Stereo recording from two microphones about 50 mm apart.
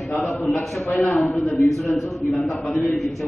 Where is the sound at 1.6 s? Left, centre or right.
Centre.